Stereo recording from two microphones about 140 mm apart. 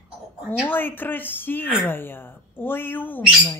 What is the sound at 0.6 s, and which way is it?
Speech, 15° left (ahead or behind).